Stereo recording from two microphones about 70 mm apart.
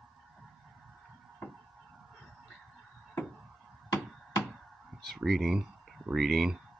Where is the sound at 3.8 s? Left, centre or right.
Left.